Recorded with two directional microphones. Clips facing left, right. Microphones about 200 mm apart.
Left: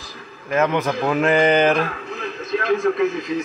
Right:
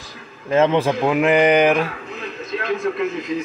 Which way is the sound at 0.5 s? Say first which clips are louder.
Right 3 dB; 25° right (ahead or behind).